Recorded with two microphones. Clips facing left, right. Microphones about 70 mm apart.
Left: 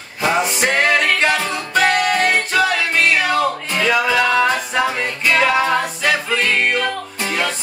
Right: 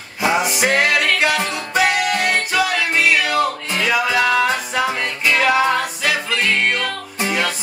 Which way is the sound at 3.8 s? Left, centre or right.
Centre.